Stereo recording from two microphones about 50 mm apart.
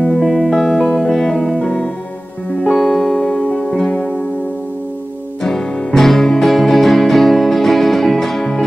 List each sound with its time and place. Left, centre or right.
0.2 s music: centre
2.7 s music: centre
5.4 s music: centre